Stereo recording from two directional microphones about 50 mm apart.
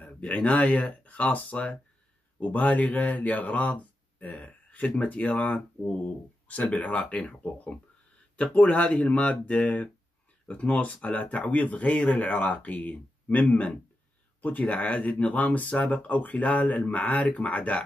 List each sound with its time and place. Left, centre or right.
0.0 s speech: left